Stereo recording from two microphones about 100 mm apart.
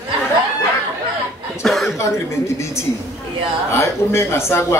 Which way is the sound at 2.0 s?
30° left (ahead or behind).